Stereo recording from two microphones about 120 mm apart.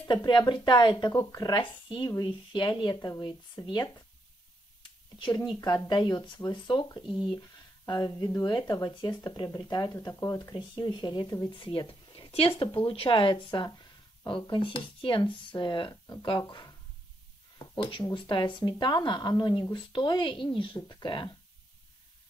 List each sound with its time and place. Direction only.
0.1 s speech: 35° left (ahead or behind)
5.2 s speech: 40° left (ahead or behind)
10.5 s speech: 40° left (ahead or behind)
11.5 s speech: 45° left (ahead or behind)
15.9 s speech: 30° left (ahead or behind)
18.1 s speech: 40° left (ahead or behind)